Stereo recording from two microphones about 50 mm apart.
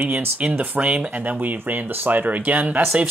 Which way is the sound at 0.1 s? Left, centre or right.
Right.